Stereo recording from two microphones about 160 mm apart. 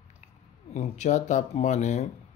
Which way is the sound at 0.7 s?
45° left (ahead or behind).